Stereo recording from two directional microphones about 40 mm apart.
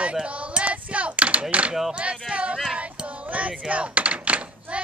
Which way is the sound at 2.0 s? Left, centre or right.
Right.